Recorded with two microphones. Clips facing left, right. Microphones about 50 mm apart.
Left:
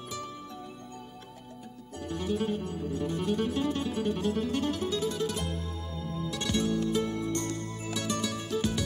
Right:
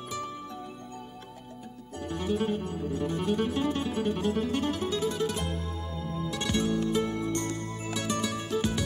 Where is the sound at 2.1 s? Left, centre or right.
Right.